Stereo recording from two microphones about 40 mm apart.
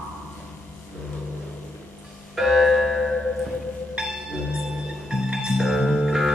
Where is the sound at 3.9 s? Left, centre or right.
Centre.